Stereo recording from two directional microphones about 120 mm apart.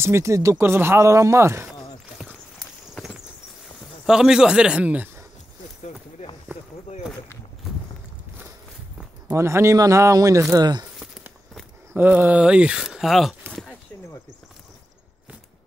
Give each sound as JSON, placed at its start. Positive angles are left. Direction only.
{"t": 0.0, "sound": "speech", "side_deg": -25}
{"t": 2.9, "sound": "a sound", "side_deg": 5}
{"t": 4.0, "sound": "speech", "side_deg": -5}
{"t": 9.3, "sound": "speech", "side_deg": -20}
{"t": 11.9, "sound": "speech", "side_deg": -15}
{"t": 13.5, "sound": "a sound", "side_deg": 5}